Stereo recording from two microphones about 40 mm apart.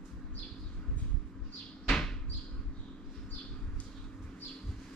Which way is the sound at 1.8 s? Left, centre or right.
Centre.